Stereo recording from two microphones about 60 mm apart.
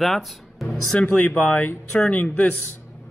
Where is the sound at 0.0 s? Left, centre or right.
Centre.